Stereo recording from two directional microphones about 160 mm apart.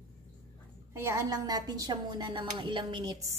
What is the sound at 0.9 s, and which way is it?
Speech, 20° right (ahead or behind).